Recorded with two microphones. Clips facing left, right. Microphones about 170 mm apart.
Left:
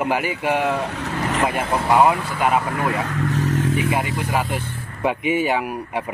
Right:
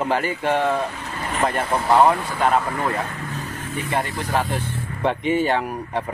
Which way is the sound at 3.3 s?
85° left.